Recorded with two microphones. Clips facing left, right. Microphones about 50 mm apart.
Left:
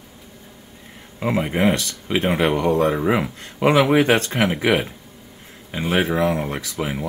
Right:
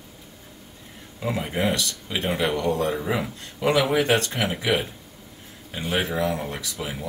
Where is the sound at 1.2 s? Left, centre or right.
Left.